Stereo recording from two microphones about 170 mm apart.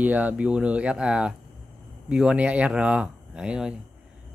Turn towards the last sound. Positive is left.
turn(degrees=-5)  # may be behind; listen again after turning